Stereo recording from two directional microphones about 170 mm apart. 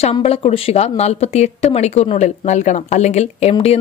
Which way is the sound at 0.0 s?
35° left (ahead or behind).